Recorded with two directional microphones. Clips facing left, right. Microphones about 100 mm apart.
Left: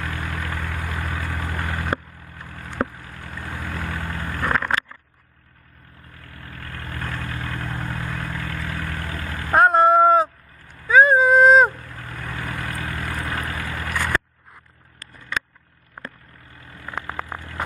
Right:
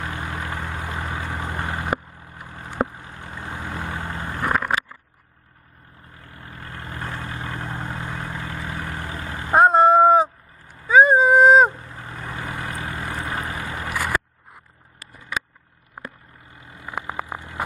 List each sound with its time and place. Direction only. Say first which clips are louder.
0.0 s vehicle: even; 25° right (ahead or behind)
6.1 s vehicle: even; 20° right (ahead or behind)
16.5 s a sound: right 1 dB; 20° right (ahead or behind)